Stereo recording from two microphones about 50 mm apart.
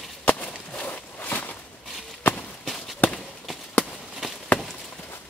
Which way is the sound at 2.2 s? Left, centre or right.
Left.